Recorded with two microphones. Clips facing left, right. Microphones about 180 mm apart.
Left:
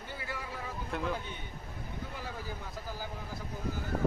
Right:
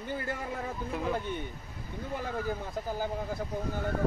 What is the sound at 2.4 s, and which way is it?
Speech, 55° right (ahead or behind).